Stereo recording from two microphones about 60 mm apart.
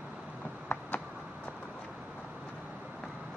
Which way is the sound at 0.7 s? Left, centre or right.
Left.